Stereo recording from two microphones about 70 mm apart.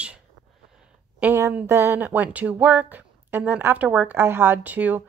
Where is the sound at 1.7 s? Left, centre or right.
Right.